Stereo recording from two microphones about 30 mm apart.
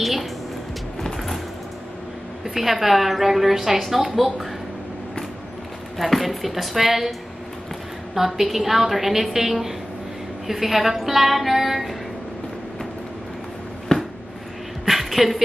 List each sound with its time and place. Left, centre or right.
0.0 s a woman's voice: centre
1.0 s vehicle: centre
2.4 s a woman's voice: centre
5.9 s a woman's voice: centre
13.9 s a sound: centre
14.9 s a sound: centre